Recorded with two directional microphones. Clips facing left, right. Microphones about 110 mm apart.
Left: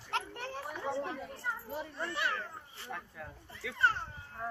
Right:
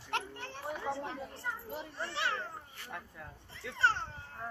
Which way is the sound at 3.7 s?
30° right (ahead or behind).